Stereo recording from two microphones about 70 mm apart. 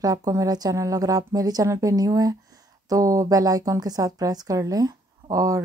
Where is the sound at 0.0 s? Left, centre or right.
Right.